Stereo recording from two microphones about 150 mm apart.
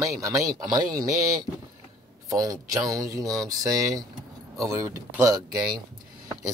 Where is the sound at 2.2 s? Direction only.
25° right (ahead or behind).